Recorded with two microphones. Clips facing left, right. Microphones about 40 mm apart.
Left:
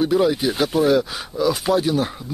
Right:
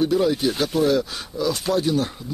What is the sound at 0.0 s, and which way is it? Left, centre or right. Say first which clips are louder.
Speech: left 2 dB; centre.